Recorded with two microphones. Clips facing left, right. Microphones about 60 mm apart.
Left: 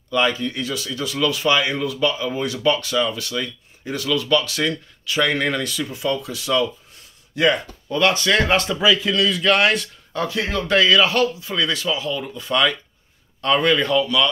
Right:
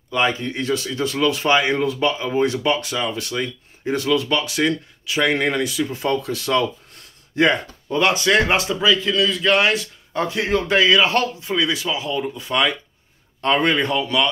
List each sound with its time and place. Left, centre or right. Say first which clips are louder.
0.1 s speech: even; right
5.9 s speech: right 2 dB; right
7.3 s speech: right 1 dB; right
8.0 s speech: right 1 dB; centre
8.7 s a man's voice: even; centre
10.1 s speech: right 3 dB; right
11.5 s speech: right 1 dB; centre